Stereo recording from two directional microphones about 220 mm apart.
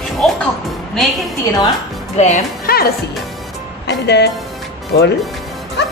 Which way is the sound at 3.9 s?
50° left (ahead or behind).